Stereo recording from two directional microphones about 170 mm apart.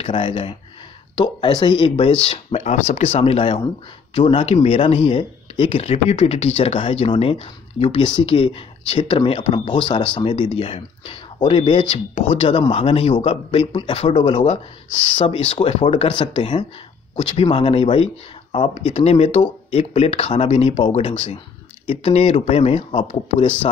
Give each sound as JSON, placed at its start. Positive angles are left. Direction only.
{"t": 0.0, "sound": "speech", "side_deg": 30}